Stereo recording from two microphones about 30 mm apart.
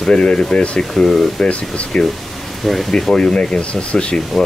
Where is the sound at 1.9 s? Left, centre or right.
Left.